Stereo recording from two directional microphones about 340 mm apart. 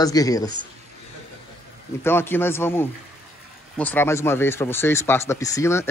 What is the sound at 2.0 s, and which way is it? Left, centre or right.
Speech, centre.